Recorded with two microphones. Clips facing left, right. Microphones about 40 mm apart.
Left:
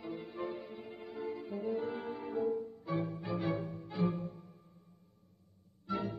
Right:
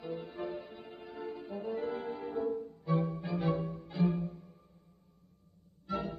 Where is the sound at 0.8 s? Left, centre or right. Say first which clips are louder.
Left 1 dB; right.